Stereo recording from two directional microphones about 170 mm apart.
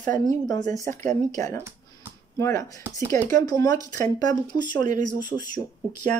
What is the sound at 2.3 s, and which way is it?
Speech, 15° left (ahead or behind).